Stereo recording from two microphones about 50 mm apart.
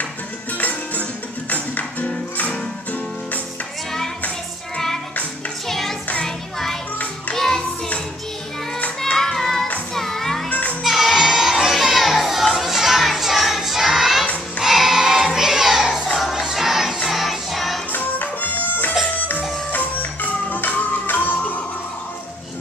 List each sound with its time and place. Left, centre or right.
0.6 s music: left
5.7 s music: centre
9.0 s music: centre
10.5 s music: left
10.8 s music: centre
12.5 s child singing: centre
14.6 s music: centre
16.2 s crowd: centre
17.0 s music: centre
17.9 s music: left